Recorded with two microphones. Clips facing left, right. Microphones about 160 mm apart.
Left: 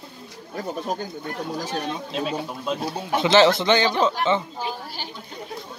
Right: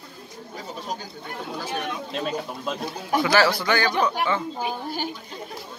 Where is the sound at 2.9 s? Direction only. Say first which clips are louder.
Left 3 dB; 25° left (ahead or behind).